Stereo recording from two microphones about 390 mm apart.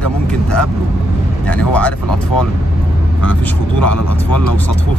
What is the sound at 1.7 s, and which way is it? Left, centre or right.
Speech, centre.